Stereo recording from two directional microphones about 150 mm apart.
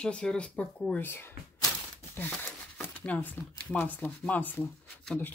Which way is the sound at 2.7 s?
10° left (ahead or behind).